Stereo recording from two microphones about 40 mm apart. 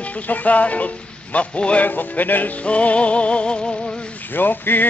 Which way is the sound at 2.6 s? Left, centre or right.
Left.